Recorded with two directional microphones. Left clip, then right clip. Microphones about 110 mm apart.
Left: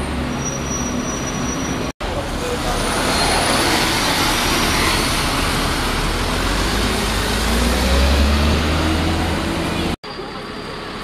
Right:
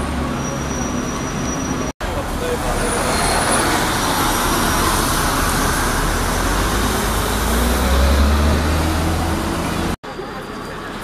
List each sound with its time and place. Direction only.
3.4 s vehicle: 30° left (ahead or behind)